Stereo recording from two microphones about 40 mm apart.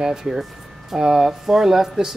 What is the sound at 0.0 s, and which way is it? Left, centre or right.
Speech, centre.